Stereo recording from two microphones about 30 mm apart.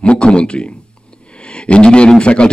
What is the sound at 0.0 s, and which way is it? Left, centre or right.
Speech, left.